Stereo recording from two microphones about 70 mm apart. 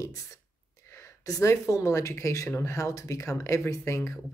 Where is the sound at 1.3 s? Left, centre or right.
Left.